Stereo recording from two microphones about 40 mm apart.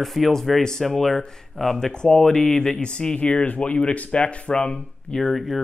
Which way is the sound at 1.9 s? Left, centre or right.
Centre.